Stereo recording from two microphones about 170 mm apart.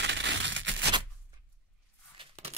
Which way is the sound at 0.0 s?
90° right.